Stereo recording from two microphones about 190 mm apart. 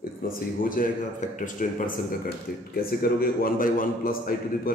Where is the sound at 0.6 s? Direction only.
45° left (ahead or behind).